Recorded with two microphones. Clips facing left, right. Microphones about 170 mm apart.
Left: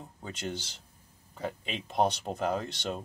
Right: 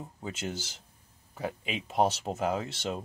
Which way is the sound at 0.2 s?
5° right (ahead or behind).